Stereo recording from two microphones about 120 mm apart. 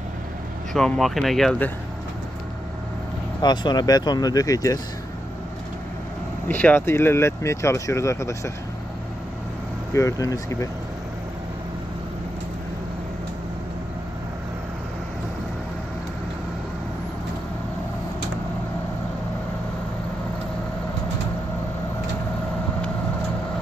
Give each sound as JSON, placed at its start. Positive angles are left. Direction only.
{"t": 0.7, "sound": "speech", "side_deg": 5}
{"t": 3.4, "sound": "speech", "side_deg": 35}
{"t": 6.4, "sound": "speech", "side_deg": 15}
{"t": 9.9, "sound": "speech", "side_deg": 30}